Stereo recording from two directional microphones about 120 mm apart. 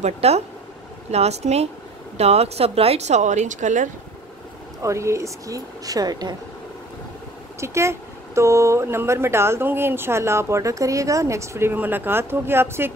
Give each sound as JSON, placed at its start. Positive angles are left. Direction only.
{"t": 0.0, "sound": "a woman's voice", "side_deg": -60}
{"t": 3.2, "sound": "speech", "side_deg": -85}
{"t": 4.8, "sound": "speech", "side_deg": -25}
{"t": 7.6, "sound": "speech", "side_deg": -25}